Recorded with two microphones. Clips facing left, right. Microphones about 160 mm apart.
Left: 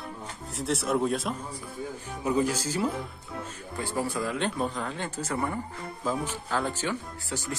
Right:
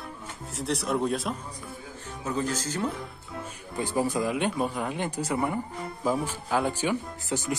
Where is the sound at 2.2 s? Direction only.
10° left (ahead or behind).